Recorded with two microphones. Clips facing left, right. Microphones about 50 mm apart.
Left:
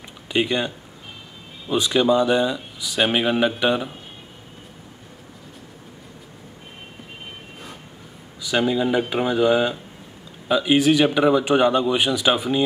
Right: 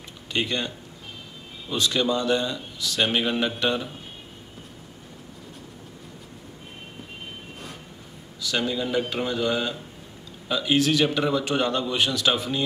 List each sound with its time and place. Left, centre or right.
0.3 s speech: centre
8.4 s speech: centre